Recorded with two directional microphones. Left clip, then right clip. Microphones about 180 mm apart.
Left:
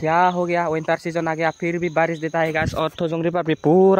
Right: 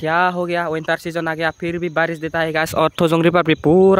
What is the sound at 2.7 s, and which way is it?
Speech, 30° right (ahead or behind).